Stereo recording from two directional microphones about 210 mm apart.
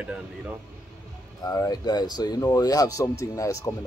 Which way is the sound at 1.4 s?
20° left (ahead or behind).